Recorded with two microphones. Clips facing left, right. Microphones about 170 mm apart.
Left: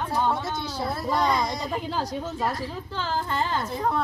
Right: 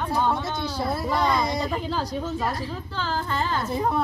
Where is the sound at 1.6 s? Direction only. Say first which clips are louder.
Right 2 dB; 15° left (ahead or behind).